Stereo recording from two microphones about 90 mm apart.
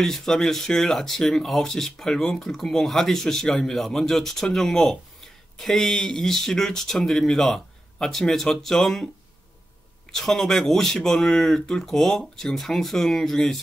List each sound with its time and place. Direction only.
0.0 s speech: 5° left (ahead or behind)
10.1 s speech: 5° left (ahead or behind)